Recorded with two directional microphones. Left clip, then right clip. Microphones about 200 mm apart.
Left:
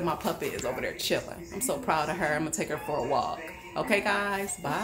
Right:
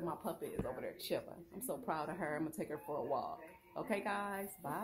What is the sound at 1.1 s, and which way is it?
Speech, 20° right (ahead or behind).